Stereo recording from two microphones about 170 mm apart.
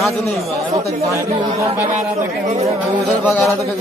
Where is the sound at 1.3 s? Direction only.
35° right (ahead or behind).